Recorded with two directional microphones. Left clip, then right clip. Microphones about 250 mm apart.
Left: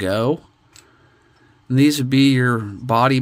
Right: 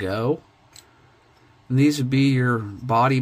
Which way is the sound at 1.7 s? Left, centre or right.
Left.